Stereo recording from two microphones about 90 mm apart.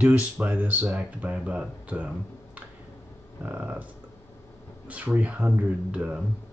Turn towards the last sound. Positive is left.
turn(degrees=-10)  # may be behind; listen again after turning